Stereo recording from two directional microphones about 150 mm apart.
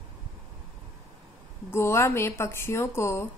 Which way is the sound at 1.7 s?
15° left (ahead or behind).